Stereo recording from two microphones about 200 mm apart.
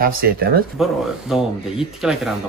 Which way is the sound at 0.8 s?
Centre (ahead or behind).